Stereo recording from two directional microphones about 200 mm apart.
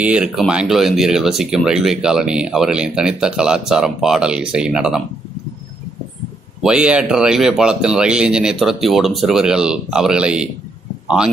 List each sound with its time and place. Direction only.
0.0 s speech: 5° right (ahead or behind)
6.6 s speech: 5° right (ahead or behind)